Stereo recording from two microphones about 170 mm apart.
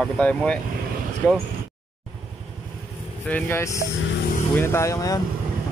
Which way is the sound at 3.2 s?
10° left (ahead or behind).